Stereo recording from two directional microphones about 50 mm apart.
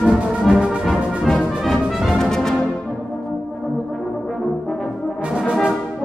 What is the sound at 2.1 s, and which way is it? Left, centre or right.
Music, centre.